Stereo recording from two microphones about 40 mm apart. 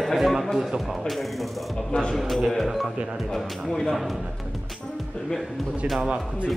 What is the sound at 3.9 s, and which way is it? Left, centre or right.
Speech, centre.